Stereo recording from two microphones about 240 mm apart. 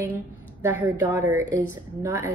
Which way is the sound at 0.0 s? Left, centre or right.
Centre.